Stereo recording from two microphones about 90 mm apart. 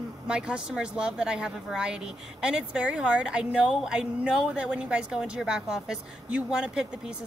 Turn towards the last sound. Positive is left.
turn(degrees=-10)  # may be behind; listen again after turning